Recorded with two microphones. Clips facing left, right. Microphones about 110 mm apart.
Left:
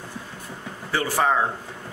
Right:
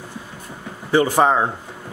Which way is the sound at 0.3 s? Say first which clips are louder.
Right 2 dB; 10° right (ahead or behind).